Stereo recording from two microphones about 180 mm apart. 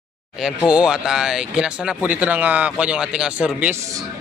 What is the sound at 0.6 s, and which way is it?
Speech, 5° right (ahead or behind).